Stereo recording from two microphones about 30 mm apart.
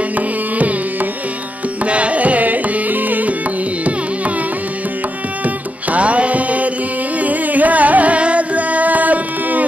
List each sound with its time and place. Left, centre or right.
1.9 s carnatic music: right
5.4 s music: right
7.2 s carnatic music: right